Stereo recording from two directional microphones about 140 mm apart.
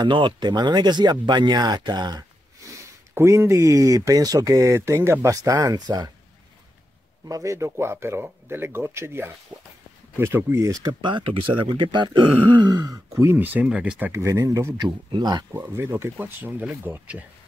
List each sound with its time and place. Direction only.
0.0 s speech: 35° right (ahead or behind)
7.2 s speech: 25° right (ahead or behind)
13.2 s speech: 15° right (ahead or behind)
14.8 s speech: 30° right (ahead or behind)
15.5 s speech: 15° right (ahead or behind)